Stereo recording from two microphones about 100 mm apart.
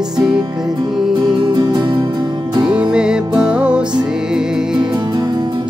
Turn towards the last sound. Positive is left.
turn(degrees=-45)  # may be behind; listen again after turning